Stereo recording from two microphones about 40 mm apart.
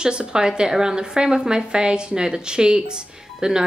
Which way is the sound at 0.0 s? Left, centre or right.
Right.